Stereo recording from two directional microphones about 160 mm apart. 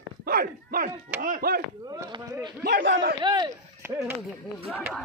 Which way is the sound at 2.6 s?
85° right.